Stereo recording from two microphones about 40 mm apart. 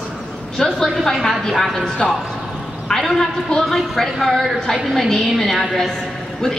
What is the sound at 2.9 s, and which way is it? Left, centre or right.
A man's voice, centre.